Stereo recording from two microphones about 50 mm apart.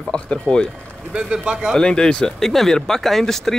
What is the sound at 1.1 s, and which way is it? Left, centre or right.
Speech, right.